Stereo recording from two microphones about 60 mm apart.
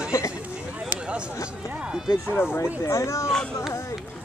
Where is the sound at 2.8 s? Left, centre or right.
Left.